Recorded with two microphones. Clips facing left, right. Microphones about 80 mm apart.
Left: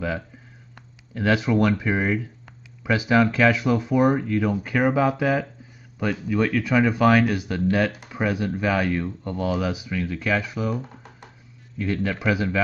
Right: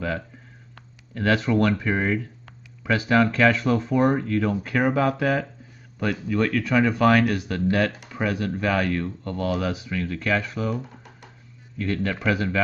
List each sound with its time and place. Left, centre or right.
0.7 s speech: centre
11.8 s speech: centre